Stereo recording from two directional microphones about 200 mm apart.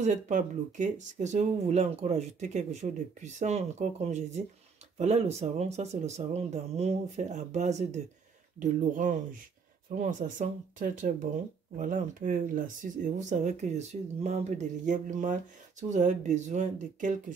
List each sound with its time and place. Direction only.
0.0 s speech: 40° right (ahead or behind)